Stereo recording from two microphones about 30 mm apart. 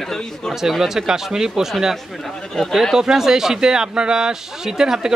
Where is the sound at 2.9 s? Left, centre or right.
Centre.